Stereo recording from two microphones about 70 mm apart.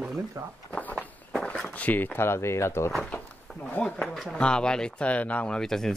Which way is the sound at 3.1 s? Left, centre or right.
Left.